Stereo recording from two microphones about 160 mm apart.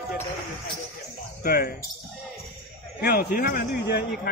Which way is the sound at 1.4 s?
65° left (ahead or behind).